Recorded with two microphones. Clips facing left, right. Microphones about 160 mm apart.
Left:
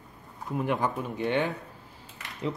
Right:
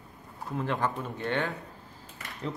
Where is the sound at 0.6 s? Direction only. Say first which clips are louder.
Left 2 dB; 15° left (ahead or behind).